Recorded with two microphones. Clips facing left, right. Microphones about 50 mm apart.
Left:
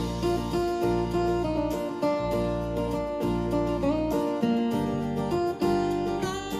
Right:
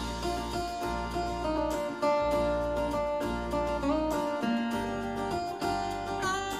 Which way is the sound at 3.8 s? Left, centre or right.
Centre.